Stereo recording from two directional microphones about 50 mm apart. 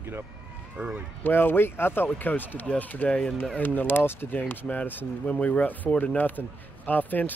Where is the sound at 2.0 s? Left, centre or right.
Left.